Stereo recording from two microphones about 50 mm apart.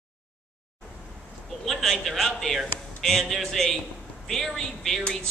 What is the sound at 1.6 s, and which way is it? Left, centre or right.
A man's voice, centre.